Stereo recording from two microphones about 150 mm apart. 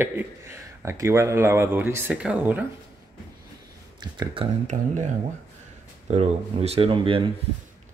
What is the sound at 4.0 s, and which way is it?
Speech, 30° right (ahead or behind).